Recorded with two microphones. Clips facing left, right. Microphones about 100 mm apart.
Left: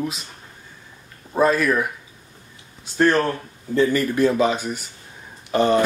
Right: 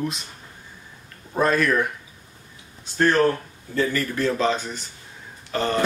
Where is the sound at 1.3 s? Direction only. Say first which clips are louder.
Left 2 dB; 5° left (ahead or behind).